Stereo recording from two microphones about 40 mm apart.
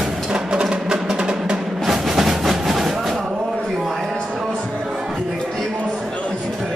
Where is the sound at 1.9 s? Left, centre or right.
Centre.